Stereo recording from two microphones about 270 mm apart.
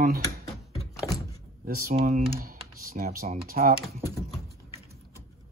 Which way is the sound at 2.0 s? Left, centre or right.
Right.